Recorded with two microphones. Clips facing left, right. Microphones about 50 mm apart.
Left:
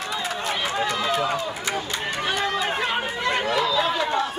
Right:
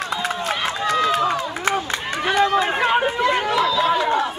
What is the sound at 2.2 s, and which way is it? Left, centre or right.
Run, right.